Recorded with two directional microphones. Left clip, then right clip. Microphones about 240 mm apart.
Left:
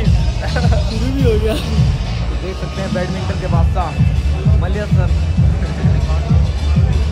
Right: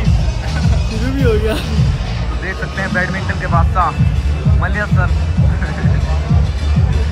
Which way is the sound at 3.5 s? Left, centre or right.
Right.